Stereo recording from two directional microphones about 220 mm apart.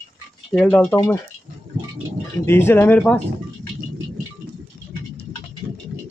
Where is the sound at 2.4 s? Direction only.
10° left (ahead or behind).